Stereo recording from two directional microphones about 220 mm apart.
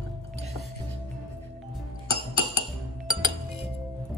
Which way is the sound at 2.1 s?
25° right (ahead or behind).